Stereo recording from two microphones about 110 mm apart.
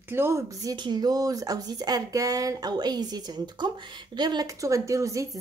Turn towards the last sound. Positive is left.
turn(degrees=-30)  # may be behind; listen again after turning